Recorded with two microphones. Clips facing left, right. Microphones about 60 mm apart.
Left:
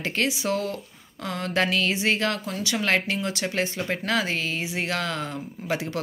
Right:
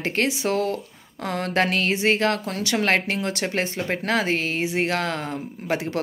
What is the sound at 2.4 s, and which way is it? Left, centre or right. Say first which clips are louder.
Speech: right 3 dB; right.